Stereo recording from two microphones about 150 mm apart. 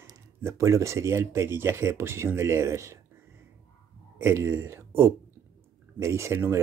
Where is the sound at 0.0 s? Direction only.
20° right (ahead or behind).